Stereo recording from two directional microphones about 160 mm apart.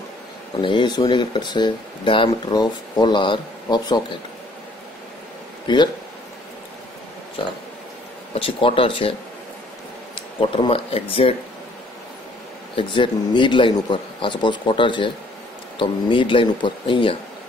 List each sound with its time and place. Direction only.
0.6 s speech: 30° left (ahead or behind)
8.4 s speech: 35° left (ahead or behind)
10.4 s speech: 35° left (ahead or behind)
12.7 s speech: 30° left (ahead or behind)